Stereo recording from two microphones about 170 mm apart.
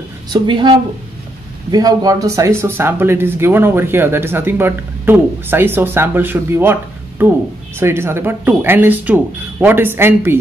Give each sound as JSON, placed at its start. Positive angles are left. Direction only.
{"t": 0.3, "sound": "speech", "side_deg": -25}